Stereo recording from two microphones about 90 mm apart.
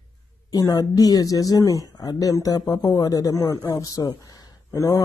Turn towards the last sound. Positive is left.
turn(degrees=35)  # may be behind; listen again after turning